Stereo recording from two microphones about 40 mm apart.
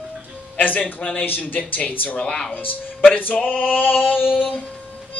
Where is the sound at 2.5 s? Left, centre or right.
Left.